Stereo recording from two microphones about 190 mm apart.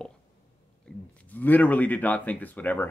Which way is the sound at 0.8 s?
5° left (ahead or behind).